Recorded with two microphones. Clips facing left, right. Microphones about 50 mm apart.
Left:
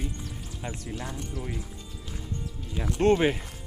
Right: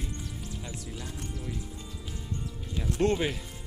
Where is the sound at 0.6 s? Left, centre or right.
Left.